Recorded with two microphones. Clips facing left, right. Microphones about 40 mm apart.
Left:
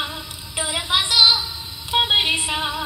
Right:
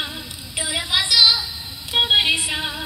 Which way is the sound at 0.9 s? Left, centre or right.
Left.